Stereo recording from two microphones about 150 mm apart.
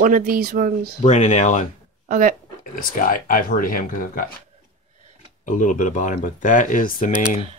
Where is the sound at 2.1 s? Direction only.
60° right (ahead or behind).